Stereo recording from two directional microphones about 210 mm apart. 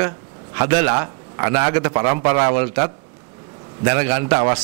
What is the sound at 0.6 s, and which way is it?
A man's voice, 15° right (ahead or behind).